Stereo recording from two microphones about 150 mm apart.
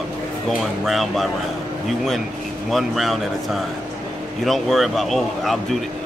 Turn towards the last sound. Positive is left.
turn(degrees=0)  # may be behind; listen again after turning